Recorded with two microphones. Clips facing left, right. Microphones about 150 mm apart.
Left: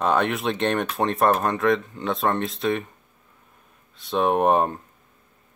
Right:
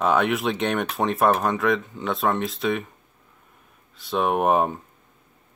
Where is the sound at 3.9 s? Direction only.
Centre (ahead or behind).